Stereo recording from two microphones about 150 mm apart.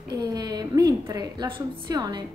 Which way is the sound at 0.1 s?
30° right (ahead or behind).